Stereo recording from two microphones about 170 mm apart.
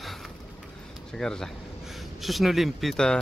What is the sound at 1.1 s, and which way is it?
Speech, 5° left (ahead or behind).